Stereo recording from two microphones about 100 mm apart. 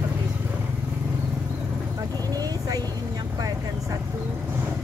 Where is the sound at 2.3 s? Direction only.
40° right (ahead or behind).